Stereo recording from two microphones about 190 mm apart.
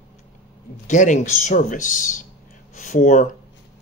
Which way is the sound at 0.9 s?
40° left (ahead or behind).